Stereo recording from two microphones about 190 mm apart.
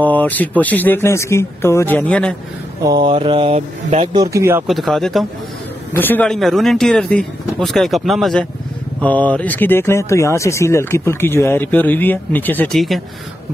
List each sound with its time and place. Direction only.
0.0 s speech: 10° left (ahead or behind)
2.8 s speech: 20° right (ahead or behind)
4.2 s speech: 15° right (ahead or behind)
4.6 s speech: centre (ahead or behind)